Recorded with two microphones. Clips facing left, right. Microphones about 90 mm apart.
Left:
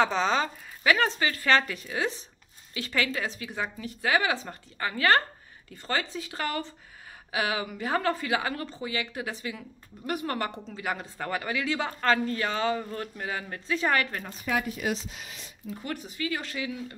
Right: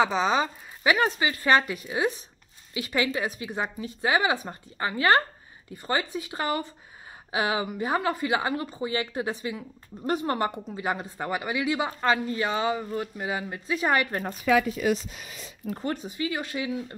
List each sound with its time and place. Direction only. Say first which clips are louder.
0.0 s speech: right 2 dB; 5° right (ahead or behind)
14.5 s speech: right 7 dB; 90° right
15.8 s speech: right 3 dB; 25° right (ahead or behind)